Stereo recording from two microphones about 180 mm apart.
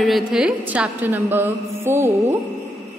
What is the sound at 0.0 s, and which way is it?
A woman's voice, centre (ahead or behind).